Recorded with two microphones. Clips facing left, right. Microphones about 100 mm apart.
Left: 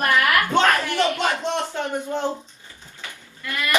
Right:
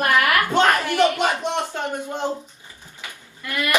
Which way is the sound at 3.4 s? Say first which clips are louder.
Right 1 dB; 20° right (ahead or behind).